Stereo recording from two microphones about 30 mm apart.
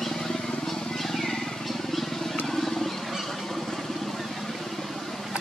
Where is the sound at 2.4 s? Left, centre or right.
Centre.